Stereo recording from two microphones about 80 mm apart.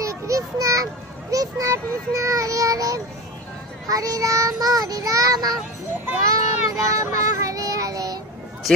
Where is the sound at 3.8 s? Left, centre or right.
Right.